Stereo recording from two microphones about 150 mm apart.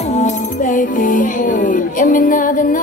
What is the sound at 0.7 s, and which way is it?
Music, 60° left (ahead or behind).